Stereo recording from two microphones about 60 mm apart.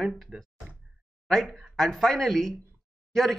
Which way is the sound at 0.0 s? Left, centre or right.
Centre.